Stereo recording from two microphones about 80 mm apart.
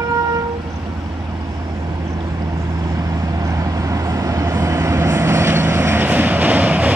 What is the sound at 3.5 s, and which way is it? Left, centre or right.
Vehicle, right.